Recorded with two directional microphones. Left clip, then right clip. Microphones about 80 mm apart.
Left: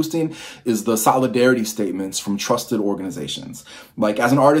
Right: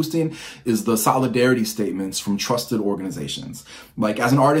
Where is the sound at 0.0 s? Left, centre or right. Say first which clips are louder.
Left 1 dB; left.